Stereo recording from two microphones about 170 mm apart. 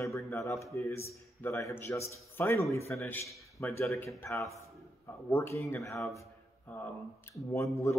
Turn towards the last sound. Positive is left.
turn(degrees=15)  # may be behind; listen again after turning